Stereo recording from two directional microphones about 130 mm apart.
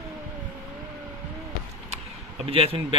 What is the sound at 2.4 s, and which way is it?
Speech, 45° right (ahead or behind).